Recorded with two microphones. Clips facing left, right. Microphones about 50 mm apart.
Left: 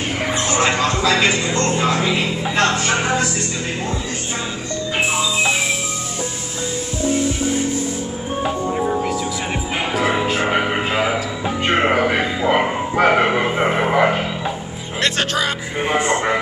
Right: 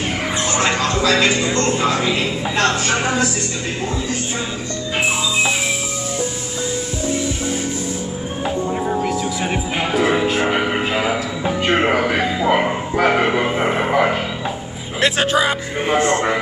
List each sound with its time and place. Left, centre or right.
0.5 s music: centre
2.9 s speech: centre
8.7 s music: centre
10.8 s a sound: centre
11.7 s music: centre
12.4 s bow-wow: centre
12.9 s speech: centre
15.0 s a man's voice: centre
16.0 s a man's voice: centre